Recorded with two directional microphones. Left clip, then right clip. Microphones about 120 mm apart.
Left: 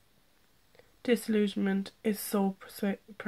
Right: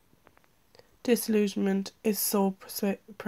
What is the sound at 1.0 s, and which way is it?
Speech, 30° right (ahead or behind).